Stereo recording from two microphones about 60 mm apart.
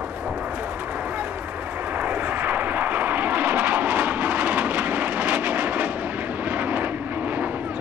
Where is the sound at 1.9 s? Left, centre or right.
Right.